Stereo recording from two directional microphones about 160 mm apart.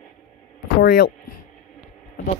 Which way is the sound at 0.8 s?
80° left.